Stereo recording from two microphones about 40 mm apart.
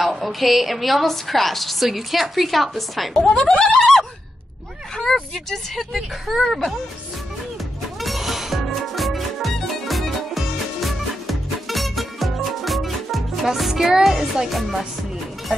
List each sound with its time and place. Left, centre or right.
0.0 s a woman's voice: centre
3.2 s speech: centre
4.9 s a sound: centre
5.9 s a woman's voice: centre
8.0 s music: centre